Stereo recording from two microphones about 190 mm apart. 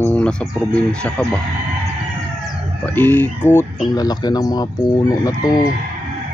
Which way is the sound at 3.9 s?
20° left (ahead or behind).